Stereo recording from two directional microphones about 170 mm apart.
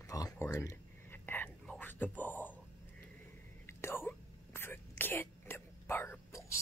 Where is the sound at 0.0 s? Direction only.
20° left (ahead or behind).